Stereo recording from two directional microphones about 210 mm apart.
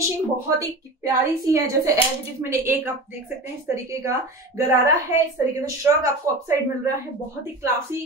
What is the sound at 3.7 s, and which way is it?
Speech, 15° right (ahead or behind).